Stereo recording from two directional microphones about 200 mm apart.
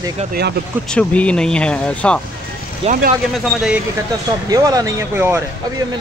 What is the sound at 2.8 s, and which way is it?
Speech, 45° right (ahead or behind).